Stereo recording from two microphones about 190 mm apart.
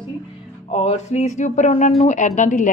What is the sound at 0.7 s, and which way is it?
A woman's voice, 30° left (ahead or behind).